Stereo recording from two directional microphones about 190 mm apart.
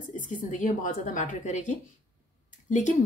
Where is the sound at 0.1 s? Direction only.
40° left (ahead or behind).